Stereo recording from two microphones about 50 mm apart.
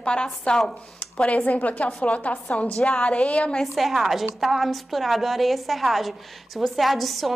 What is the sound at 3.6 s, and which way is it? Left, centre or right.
A woman's voice, centre.